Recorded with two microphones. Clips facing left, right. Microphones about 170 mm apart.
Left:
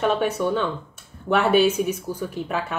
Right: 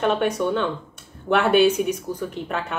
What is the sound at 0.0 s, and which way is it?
A woman's voice, 5° left (ahead or behind).